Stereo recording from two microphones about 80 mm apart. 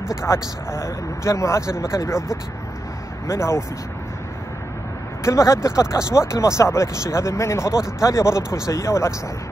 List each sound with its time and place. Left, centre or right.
0.3 s speech: left
3.3 s speech: left
5.2 s speech: left